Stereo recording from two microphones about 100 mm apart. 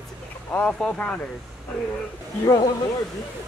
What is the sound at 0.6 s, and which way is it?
Speech, 15° left (ahead or behind).